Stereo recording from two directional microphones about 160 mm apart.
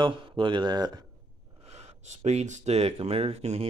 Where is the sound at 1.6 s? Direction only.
40° right (ahead or behind).